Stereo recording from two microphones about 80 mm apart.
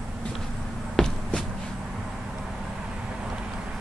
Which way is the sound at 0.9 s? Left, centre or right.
Centre.